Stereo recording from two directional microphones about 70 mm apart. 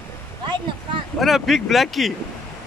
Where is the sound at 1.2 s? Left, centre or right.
Centre.